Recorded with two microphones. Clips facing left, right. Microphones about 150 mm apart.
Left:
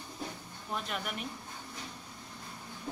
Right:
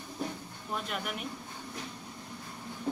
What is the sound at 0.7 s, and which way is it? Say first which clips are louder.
Speech: right 1 dB; centre (ahead or behind).